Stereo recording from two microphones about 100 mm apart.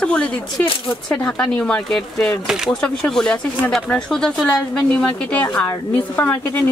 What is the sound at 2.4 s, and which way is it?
Speech, 5° right (ahead or behind).